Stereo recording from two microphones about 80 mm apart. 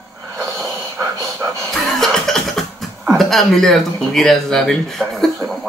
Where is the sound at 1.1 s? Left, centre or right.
Right.